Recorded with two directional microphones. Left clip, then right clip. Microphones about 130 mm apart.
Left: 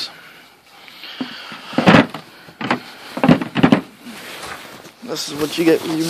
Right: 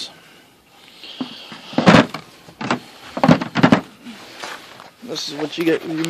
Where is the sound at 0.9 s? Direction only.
30° right (ahead or behind).